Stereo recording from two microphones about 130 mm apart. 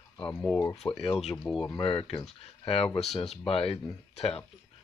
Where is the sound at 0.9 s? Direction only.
50° left (ahead or behind).